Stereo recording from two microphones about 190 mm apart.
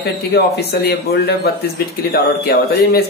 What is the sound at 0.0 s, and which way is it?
Speech, 60° left (ahead or behind).